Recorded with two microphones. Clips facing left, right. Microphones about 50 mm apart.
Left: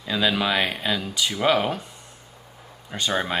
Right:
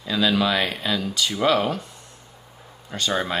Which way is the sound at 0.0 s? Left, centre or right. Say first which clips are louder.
Right 2 dB; centre.